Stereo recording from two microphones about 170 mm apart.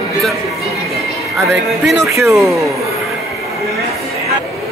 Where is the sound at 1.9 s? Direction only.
15° right (ahead or behind).